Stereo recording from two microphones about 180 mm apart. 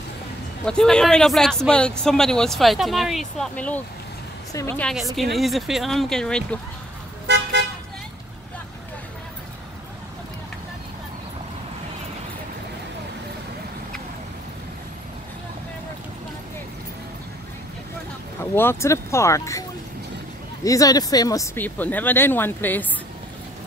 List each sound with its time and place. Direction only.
0.7 s speech: 5° left (ahead or behind)
4.9 s speech: centre (ahead or behind)
7.2 s vehicle: 75° right (ahead or behind)
18.4 s speech: 10° left (ahead or behind)
20.6 s speech: 20° left (ahead or behind)